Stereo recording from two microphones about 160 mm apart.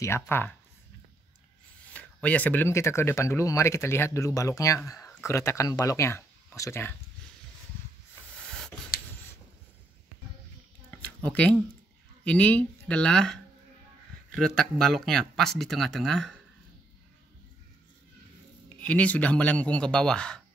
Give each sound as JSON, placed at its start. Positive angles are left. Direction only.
{"t": 0.0, "sound": "speech", "side_deg": 15}
{"t": 2.2, "sound": "speech", "side_deg": 10}
{"t": 8.5, "sound": "a sound", "side_deg": 5}
{"t": 10.9, "sound": "a sound", "side_deg": 10}
{"t": 11.2, "sound": "speech", "side_deg": 10}
{"t": 18.8, "sound": "speech", "side_deg": 10}